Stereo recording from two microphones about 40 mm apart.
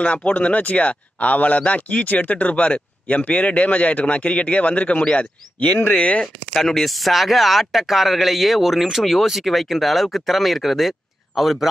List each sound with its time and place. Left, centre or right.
0.0 s speech: left
6.2 s speech: centre